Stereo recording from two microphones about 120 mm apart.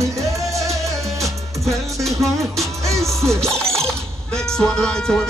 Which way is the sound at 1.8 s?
25° right (ahead or behind).